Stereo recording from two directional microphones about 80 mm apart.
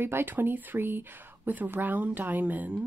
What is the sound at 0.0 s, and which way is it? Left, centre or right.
Speech, right.